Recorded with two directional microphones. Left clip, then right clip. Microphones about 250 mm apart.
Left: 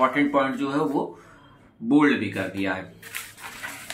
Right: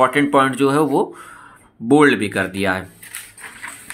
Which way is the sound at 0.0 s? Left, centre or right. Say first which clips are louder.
Right 7 dB; right.